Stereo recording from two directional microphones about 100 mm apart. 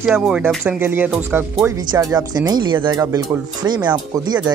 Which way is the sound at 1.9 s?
40° right (ahead or behind).